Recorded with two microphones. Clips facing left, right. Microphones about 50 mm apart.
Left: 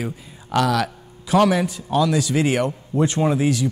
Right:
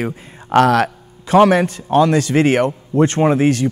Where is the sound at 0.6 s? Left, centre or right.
Right.